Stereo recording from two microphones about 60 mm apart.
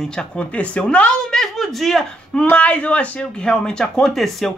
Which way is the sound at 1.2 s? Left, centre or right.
Centre.